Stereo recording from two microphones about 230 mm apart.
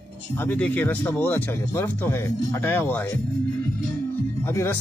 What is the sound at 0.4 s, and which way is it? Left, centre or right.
Speech, centre.